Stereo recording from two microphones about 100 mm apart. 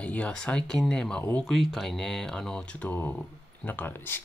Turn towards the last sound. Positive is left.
turn(degrees=20)  # may be behind; listen again after turning